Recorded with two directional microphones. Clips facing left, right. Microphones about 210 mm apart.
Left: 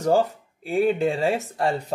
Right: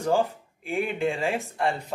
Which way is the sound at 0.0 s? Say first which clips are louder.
Left 4 dB; 40° left (ahead or behind).